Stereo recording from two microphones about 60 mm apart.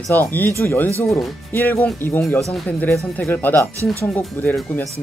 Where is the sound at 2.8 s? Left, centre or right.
Left.